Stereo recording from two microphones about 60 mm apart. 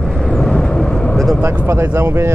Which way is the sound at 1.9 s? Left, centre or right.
Right.